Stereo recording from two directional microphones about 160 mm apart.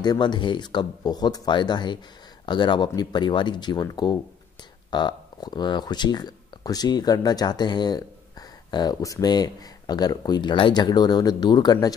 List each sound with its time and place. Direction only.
0.0 s speech: 25° left (ahead or behind)